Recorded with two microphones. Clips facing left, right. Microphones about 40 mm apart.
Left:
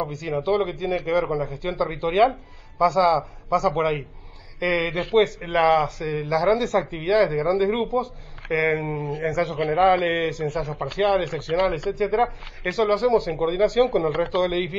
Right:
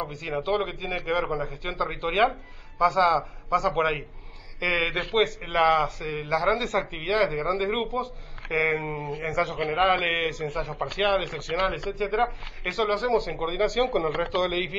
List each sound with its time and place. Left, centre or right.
0.2 s a man's voice: right